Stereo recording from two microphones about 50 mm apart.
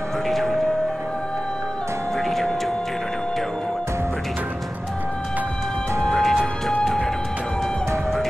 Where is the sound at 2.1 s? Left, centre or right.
Centre.